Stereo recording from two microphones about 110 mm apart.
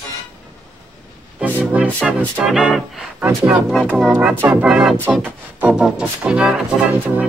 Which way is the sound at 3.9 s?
10° right (ahead or behind).